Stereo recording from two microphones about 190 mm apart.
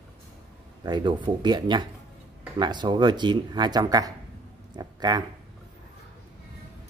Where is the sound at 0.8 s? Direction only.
25° right (ahead or behind).